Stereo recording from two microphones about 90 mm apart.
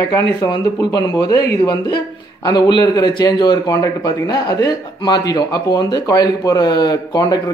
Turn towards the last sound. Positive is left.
turn(degrees=50)  # may be behind; listen again after turning